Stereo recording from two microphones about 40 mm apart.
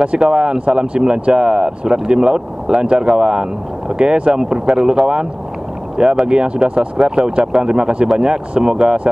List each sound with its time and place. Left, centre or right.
0.0 s speech: right